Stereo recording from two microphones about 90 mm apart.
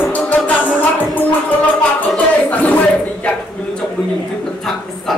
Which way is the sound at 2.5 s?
15° left (ahead or behind).